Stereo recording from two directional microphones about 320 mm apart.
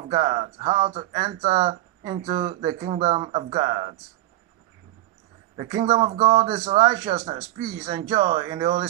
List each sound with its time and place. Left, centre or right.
0.1 s speech: centre
5.6 s speech: centre